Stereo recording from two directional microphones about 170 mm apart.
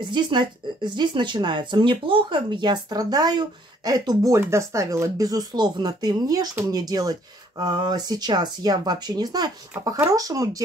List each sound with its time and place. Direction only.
0.0 s speech: 25° right (ahead or behind)